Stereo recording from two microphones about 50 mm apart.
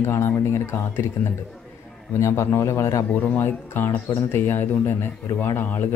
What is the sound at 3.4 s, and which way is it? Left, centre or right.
Speech, left.